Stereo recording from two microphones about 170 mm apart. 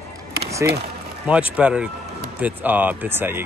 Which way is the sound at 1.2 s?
5° right (ahead or behind).